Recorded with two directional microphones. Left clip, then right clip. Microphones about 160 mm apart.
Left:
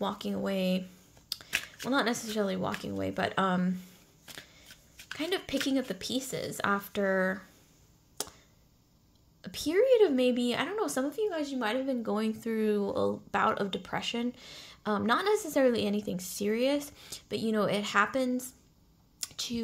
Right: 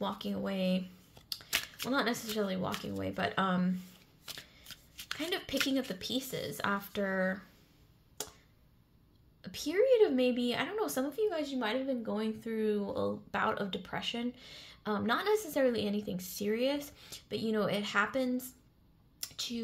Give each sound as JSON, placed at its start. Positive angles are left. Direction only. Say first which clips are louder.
{"t": 0.0, "sound": "a woman's voice", "louder": "left 3 dB", "side_deg": 25}
{"t": 4.4, "sound": "shuffling cards", "louder": "left 2 dB", "side_deg": 25}
{"t": 5.1, "sound": "a woman's voice", "louder": "left 3 dB", "side_deg": 20}
{"t": 8.2, "sound": "tick", "louder": "left 4 dB", "side_deg": 25}
{"t": 9.4, "sound": "a woman's voice", "louder": "left 3 dB", "side_deg": 25}
{"t": 19.1, "sound": "a sound", "louder": "left 3 dB", "side_deg": 20}